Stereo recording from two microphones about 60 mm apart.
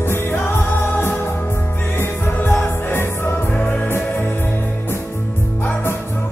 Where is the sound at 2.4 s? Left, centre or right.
Left.